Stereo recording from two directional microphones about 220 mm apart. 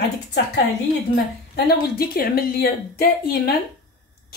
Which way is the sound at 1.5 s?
45° left (ahead or behind).